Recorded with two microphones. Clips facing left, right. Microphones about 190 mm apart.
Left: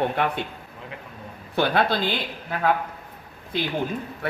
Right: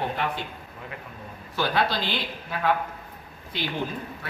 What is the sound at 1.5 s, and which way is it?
Speech, 55° left (ahead or behind).